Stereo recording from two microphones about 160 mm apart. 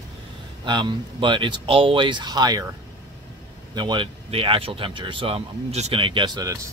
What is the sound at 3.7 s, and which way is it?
Speech, 30° right (ahead or behind).